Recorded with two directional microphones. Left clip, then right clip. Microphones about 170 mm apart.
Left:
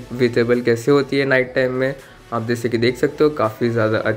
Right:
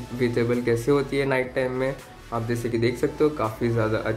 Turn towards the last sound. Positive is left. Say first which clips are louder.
# left 6 dB
turn(degrees=25)  # may be behind; listen again after turning